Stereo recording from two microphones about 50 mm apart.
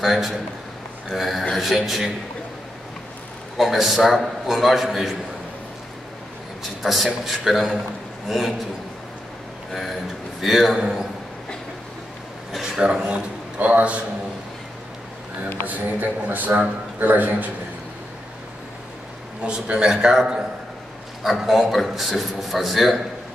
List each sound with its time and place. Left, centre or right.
0.0 s a man's voice: centre
3.5 s a man's voice: centre
6.8 s a man's voice: centre
9.7 s a man's voice: centre
12.6 s speech: centre
13.6 s a man's voice: right
15.6 s a man's voice: right
19.4 s a man's voice: centre